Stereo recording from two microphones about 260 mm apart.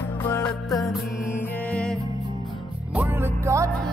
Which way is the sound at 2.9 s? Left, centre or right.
Centre.